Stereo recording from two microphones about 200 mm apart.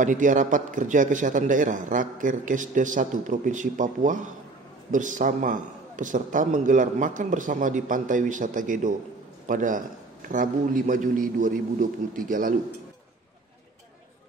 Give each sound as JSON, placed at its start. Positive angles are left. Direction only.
{"t": 0.0, "sound": "a man's voice", "side_deg": -40}